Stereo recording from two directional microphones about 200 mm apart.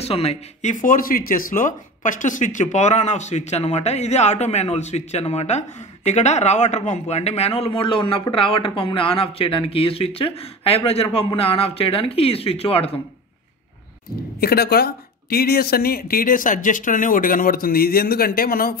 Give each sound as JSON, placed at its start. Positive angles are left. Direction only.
{"t": 0.0, "sound": "speech", "side_deg": 30}
{"t": 14.4, "sound": "speech", "side_deg": 50}